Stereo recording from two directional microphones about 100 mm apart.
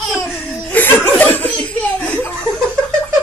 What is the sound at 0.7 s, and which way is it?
Laughter, 20° left (ahead or behind).